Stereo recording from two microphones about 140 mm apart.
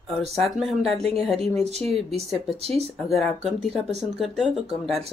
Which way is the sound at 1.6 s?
50° right (ahead or behind).